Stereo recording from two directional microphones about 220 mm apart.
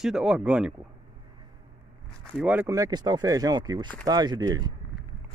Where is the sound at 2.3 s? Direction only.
5° right (ahead or behind).